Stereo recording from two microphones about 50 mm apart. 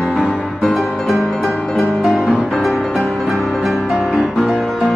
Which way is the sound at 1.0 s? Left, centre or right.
Centre.